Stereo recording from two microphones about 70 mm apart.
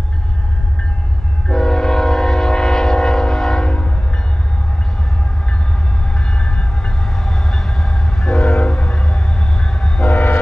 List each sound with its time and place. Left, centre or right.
1.5 s train: centre
6.1 s train: centre
10.0 s pulse: left